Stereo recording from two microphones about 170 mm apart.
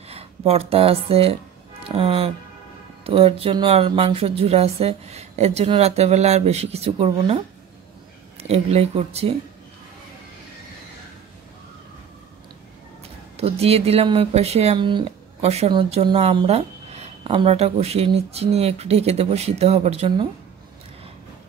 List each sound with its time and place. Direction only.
0.5 s speech: 35° right (ahead or behind)
13.4 s speech: 35° right (ahead or behind)
15.4 s speech: 40° right (ahead or behind)